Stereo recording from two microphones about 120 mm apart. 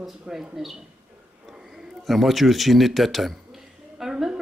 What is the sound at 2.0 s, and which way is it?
A woman's voice, centre (ahead or behind).